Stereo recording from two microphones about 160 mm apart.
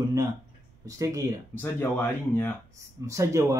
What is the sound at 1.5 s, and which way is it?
Speech, 15° left (ahead or behind).